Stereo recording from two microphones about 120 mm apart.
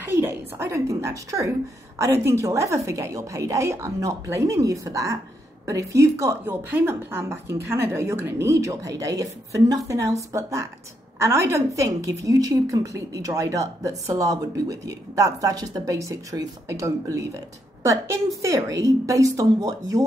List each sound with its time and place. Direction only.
0.0 s a woman's voice: 15° right (ahead or behind)